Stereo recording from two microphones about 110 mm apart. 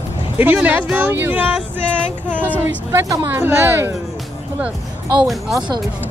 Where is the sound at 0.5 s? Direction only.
15° right (ahead or behind).